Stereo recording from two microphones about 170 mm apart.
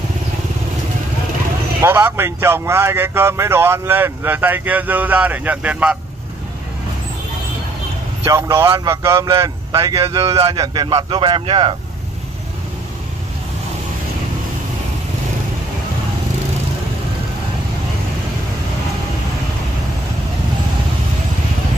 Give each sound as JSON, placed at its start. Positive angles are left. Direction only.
{"t": 1.8, "sound": "speech", "side_deg": -15}
{"t": 8.3, "sound": "speech", "side_deg": -15}
{"t": 9.8, "sound": "speech", "side_deg": -30}